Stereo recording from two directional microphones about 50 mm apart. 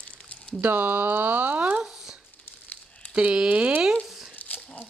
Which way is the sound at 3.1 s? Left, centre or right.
Centre.